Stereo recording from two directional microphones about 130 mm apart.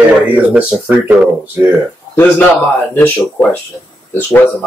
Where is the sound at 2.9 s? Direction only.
15° left (ahead or behind).